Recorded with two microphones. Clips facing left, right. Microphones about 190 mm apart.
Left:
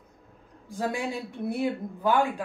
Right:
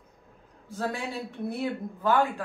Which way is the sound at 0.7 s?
15° left (ahead or behind).